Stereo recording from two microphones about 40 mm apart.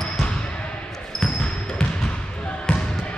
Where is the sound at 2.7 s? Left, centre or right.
Left.